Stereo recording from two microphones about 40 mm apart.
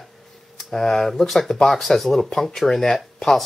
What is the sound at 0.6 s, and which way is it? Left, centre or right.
Speech, centre.